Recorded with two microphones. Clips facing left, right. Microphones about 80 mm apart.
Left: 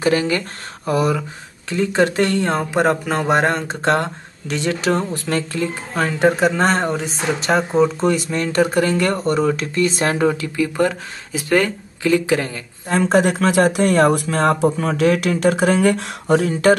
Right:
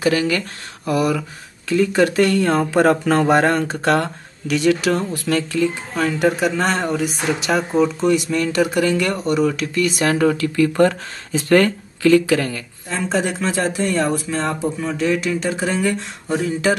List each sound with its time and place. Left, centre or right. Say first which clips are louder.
0.0 s speech: even; left
12.8 s speech: left 6 dB; left